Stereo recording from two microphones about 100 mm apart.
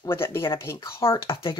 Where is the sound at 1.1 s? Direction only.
60° left (ahead or behind).